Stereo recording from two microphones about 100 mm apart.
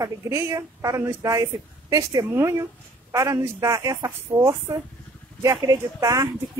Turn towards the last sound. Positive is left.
turn(degrees=-35)  # may be behind; listen again after turning